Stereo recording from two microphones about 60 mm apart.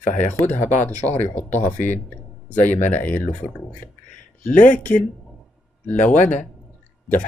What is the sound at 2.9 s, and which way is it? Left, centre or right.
Speech, left.